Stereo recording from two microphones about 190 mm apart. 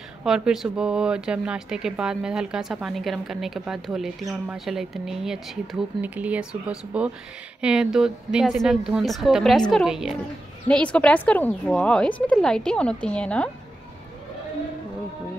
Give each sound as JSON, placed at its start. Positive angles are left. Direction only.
{"t": 0.2, "sound": "speech", "side_deg": 0}